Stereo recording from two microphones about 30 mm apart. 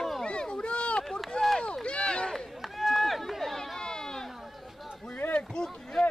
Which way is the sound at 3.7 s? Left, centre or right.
Left.